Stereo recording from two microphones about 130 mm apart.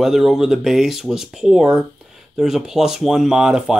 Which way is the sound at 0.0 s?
Centre (ahead or behind).